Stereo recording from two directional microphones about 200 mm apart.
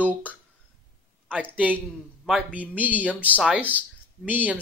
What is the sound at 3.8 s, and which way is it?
Speech, 10° right (ahead or behind).